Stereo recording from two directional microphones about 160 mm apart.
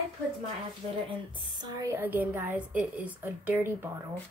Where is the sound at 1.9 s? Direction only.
10° right (ahead or behind).